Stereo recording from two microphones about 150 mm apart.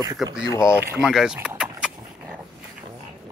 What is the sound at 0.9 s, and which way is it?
Vehicle, 5° right (ahead or behind).